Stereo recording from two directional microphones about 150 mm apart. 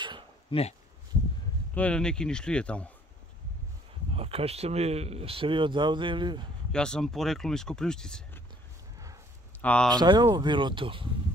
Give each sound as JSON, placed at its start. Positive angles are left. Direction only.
{"t": 0.5, "sound": "speech", "side_deg": 40}
{"t": 1.7, "sound": "speech", "side_deg": 10}
{"t": 4.1, "sound": "speech", "side_deg": -40}
{"t": 6.7, "sound": "speech", "side_deg": 5}
{"t": 9.6, "sound": "speech", "side_deg": 10}
{"t": 9.9, "sound": "speech", "side_deg": -30}